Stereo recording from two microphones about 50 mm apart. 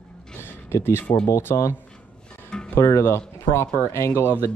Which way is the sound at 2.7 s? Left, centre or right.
Left.